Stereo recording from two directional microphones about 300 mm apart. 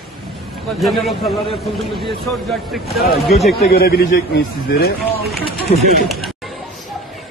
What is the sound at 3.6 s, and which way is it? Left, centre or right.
A man's voice, left.